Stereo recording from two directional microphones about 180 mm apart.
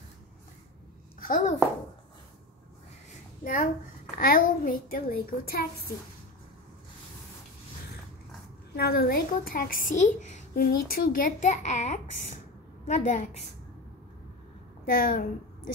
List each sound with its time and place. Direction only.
1.2 s a child's voice: 50° left (ahead or behind)
4.2 s a child's voice: 50° left (ahead or behind)
8.7 s a woman's voice: 60° left (ahead or behind); by 13.3 s 45° left (ahead or behind)
14.9 s a woman's voice: 50° left (ahead or behind)